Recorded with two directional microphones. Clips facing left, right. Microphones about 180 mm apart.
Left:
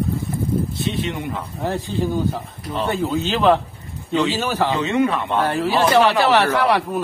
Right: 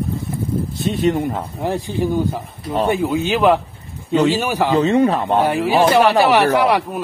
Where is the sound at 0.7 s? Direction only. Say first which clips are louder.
Right 6 dB; 45° right (ahead or behind).